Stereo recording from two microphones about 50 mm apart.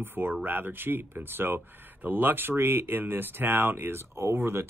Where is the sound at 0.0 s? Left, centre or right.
Right.